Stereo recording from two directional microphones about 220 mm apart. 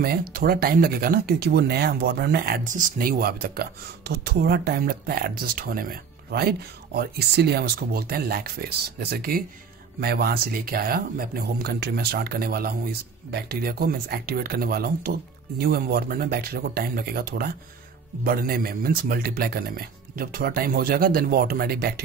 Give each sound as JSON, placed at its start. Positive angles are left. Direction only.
{"t": 0.0, "sound": "speech", "side_deg": -45}